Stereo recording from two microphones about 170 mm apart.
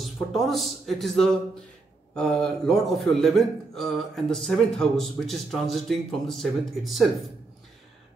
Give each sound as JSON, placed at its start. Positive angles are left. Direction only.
{"t": 0.3, "sound": "a man's voice", "side_deg": 0}